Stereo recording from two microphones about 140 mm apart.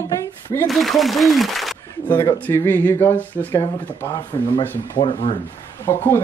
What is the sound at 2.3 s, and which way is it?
Speech, 15° left (ahead or behind).